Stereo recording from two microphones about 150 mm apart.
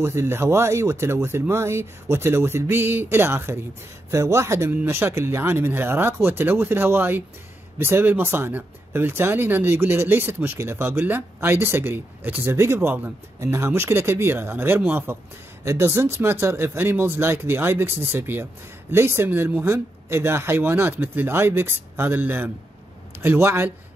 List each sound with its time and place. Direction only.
0.0 s speech: 15° right (ahead or behind)